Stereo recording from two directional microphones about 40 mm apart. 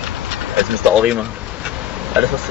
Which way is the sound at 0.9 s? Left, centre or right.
Right.